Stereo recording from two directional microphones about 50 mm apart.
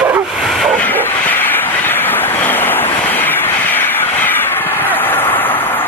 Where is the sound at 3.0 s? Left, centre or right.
Left.